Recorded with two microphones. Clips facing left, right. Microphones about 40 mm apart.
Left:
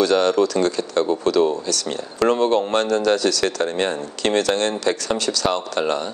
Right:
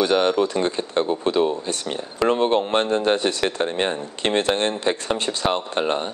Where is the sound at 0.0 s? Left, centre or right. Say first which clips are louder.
Left 2 dB; right.